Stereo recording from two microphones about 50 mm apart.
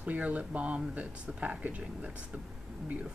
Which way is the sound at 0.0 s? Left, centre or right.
Right.